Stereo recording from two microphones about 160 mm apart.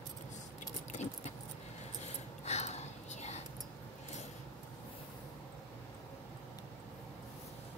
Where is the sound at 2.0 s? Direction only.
45° left (ahead or behind).